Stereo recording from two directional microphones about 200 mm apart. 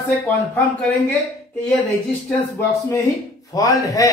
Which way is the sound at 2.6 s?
10° left (ahead or behind).